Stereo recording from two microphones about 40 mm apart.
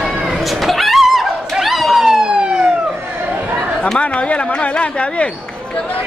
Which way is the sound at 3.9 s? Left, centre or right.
Left.